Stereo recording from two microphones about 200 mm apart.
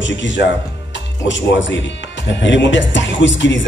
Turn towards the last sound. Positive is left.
turn(degrees=65)  # may be behind; listen again after turning